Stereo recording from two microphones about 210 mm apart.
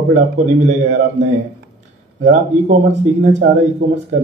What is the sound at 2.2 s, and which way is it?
A man's voice, 35° right (ahead or behind).